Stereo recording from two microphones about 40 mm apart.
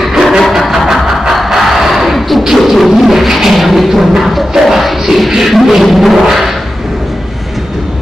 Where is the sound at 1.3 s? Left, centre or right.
Centre.